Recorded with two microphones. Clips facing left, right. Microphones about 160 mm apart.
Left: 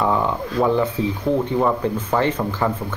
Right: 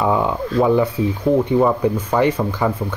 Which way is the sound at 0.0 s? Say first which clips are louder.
Right 2 dB; 15° right (ahead or behind).